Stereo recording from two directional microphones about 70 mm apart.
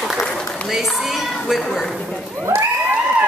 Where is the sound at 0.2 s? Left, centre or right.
Centre.